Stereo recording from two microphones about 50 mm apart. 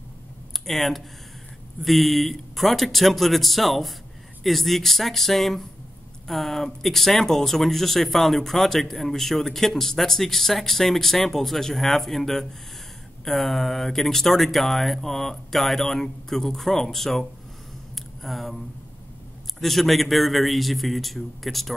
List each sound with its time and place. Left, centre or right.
0.5 s speech: centre
17.9 s a sound: centre
19.6 s speech: centre